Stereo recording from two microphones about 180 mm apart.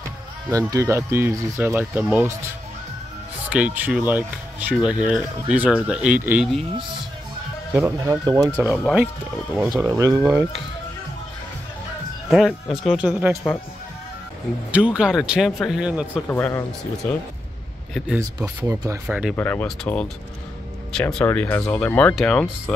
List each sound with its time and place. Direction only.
0.5 s speech: 15° right (ahead or behind)
3.4 s speech: 5° right (ahead or behind)
7.7 s speech: 15° right (ahead or behind)
8.8 s speech: 5° right (ahead or behind)
9.7 s speech: 20° right (ahead or behind)
10.2 s speech: 5° right (ahead or behind)
12.3 s speech: centre (ahead or behind)
14.7 s speech: 5° right (ahead or behind)
16.3 s speech: 10° left (ahead or behind)
18.2 s speech: 20° right (ahead or behind)
19.0 s speech: 5° right (ahead or behind)
19.3 s speech: 10° left (ahead or behind)